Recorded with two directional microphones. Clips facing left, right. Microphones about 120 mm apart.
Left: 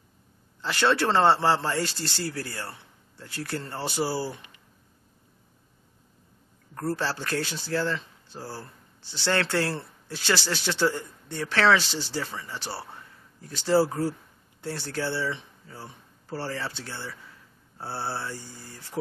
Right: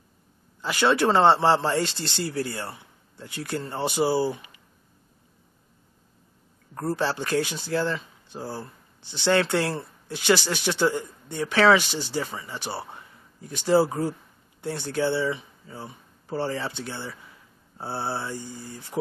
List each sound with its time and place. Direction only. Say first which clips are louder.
0.6 s speech: right 2 dB; 10° right (ahead or behind)
6.7 s speech: right 3 dB; 15° right (ahead or behind)